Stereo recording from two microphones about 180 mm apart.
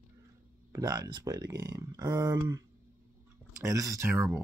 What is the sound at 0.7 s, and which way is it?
Speech, 20° right (ahead or behind).